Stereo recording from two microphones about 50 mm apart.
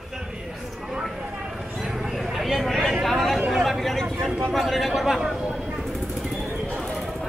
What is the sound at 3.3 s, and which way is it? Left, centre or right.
Chatter, centre.